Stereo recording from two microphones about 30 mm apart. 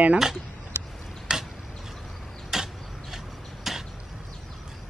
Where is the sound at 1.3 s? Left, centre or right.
Centre.